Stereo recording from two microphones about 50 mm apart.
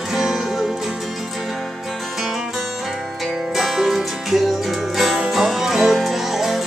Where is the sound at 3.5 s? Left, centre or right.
Centre.